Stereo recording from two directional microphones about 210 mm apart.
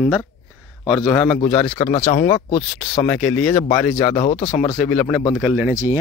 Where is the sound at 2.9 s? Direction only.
5° left (ahead or behind).